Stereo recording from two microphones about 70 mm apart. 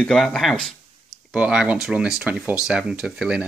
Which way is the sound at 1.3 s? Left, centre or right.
Centre.